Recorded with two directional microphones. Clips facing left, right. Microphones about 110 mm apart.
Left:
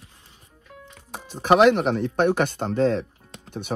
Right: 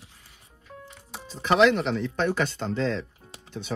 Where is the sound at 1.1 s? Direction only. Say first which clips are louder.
Left 6 dB; 60° left (ahead or behind).